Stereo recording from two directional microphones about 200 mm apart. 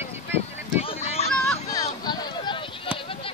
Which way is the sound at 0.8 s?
30° left (ahead or behind).